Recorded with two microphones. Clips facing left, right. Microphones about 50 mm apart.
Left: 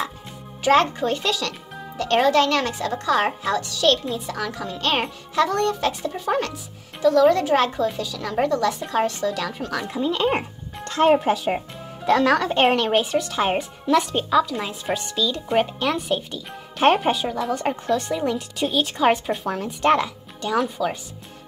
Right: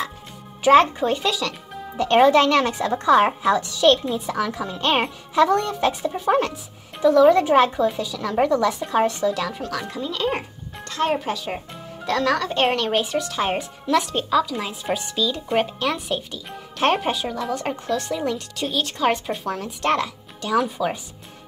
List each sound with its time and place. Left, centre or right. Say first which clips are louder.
0.7 s speech: right 3 dB; centre
2.0 s speech: right 3 dB; centre
9.9 s speech: left 4 dB; left; by 20.7 s centre
20.7 s speech: even; centre